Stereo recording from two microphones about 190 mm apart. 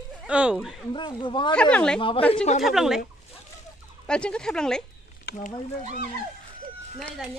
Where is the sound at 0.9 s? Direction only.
25° left (ahead or behind).